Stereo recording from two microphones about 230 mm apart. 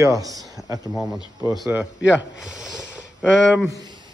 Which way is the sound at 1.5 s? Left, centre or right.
Centre.